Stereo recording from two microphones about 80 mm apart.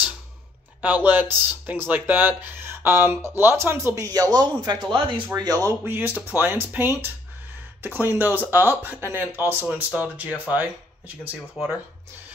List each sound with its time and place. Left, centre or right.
0.7 s speech: centre
4.0 s a man's voice: right
4.7 s speech: right
5.4 s a man's voice: right
5.9 s speech: right
9.9 s speech: centre